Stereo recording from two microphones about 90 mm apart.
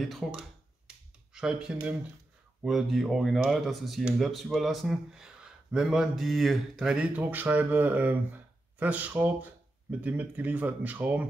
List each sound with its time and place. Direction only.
0.0 s speech: centre (ahead or behind)
0.4 s a sound: 10° right (ahead or behind)
2.6 s a man's voice: centre (ahead or behind); by 11.2 s 15° right (ahead or behind)